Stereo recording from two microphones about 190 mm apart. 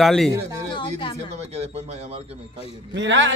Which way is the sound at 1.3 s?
35° right (ahead or behind).